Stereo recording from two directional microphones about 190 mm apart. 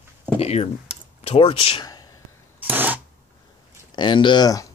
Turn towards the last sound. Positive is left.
turn(degrees=20)  # may be behind; listen again after turning